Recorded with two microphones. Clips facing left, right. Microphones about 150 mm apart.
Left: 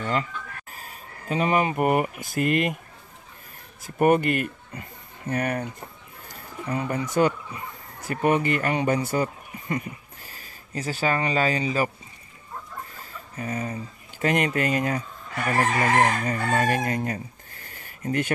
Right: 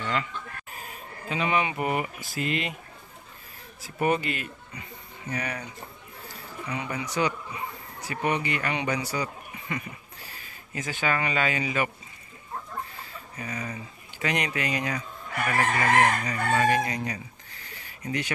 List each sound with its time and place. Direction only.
0.0 s chicken: 40° left (ahead or behind)
1.3 s speech: 40° left (ahead or behind)
3.8 s speech: 55° left (ahead or behind)
6.7 s speech: 45° left (ahead or behind)
12.9 s speech: 45° left (ahead or behind)
15.4 s chicken: 40° left (ahead or behind)